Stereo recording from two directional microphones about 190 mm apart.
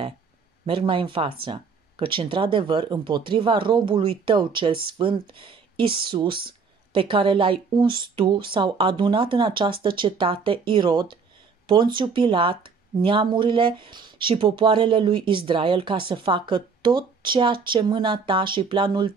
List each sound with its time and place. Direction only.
0.7 s speech: 25° right (ahead or behind)